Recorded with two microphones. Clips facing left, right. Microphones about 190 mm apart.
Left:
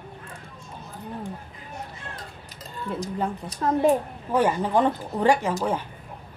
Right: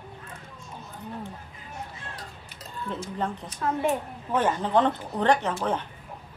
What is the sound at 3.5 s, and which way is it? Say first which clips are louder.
Speech: left 7 dB; 40° left (ahead or behind).